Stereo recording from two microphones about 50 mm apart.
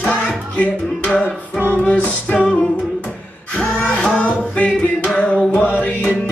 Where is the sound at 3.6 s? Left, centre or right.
Left.